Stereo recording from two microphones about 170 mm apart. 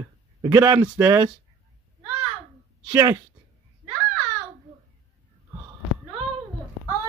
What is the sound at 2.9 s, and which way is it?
Speech, 20° right (ahead or behind).